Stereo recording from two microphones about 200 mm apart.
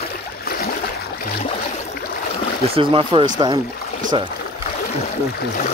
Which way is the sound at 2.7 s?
25° right (ahead or behind).